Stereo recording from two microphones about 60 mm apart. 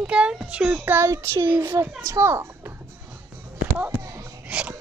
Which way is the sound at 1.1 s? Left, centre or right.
Right.